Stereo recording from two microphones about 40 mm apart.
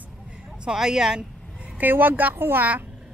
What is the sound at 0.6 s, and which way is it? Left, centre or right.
Speech, centre.